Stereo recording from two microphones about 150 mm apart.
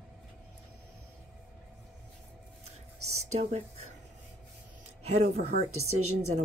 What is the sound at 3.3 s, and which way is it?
Speech, 45° right (ahead or behind).